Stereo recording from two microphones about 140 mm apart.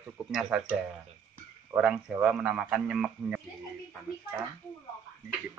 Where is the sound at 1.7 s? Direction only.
5° right (ahead or behind).